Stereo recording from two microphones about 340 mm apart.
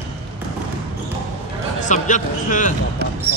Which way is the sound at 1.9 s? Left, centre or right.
Left.